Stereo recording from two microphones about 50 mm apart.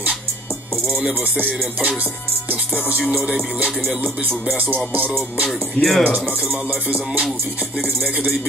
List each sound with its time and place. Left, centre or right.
4.9 s music: right
5.8 s speech: centre